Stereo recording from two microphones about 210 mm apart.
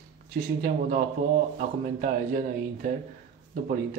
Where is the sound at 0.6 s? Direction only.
40° right (ahead or behind).